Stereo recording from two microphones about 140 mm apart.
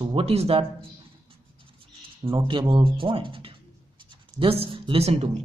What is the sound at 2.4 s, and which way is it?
Speech, 35° right (ahead or behind).